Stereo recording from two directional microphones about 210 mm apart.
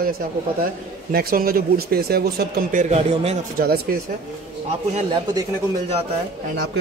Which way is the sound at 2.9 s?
30° right (ahead or behind).